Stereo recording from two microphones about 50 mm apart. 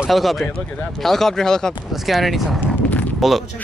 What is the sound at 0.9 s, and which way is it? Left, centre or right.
Speech, centre.